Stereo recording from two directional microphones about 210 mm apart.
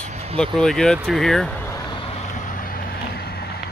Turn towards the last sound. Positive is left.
turn(degrees=50)  # may be behind; listen again after turning